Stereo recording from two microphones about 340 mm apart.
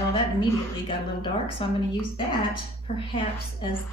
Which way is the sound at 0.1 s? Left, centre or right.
Centre.